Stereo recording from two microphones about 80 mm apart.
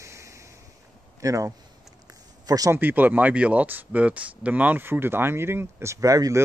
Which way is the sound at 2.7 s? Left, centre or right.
Right.